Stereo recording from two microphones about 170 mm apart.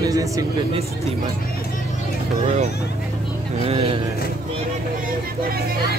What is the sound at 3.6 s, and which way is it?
Speech, 35° right (ahead or behind).